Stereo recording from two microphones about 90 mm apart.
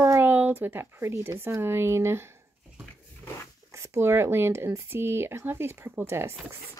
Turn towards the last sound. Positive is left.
turn(degrees=-30)  # may be behind; listen again after turning